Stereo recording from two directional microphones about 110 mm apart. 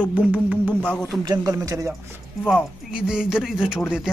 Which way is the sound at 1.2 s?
35° right (ahead or behind).